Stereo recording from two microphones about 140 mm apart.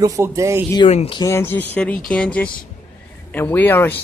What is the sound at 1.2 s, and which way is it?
Speech, 20° left (ahead or behind).